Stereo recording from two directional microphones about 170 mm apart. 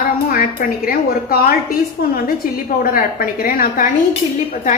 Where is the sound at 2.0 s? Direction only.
70° left (ahead or behind).